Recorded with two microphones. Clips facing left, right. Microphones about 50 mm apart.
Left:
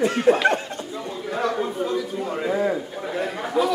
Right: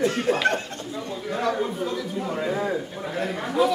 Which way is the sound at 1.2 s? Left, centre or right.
Centre.